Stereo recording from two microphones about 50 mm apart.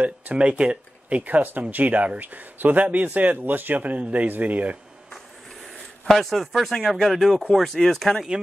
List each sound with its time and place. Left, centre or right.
0.4 s speech: right
1.2 s speech: right
6.0 s a man's voice: centre